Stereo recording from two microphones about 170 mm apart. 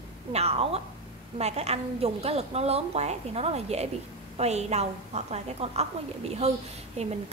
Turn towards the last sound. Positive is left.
turn(degrees=-40)  # may be behind; listen again after turning